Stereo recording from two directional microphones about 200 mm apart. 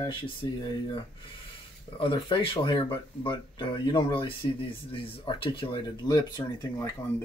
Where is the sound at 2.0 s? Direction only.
25° left (ahead or behind).